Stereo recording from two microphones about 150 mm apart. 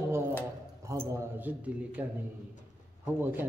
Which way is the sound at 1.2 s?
10° right (ahead or behind).